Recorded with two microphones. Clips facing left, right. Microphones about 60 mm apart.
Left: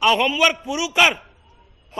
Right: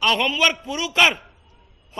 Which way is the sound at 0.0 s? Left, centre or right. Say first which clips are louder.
Left 3 dB; centre.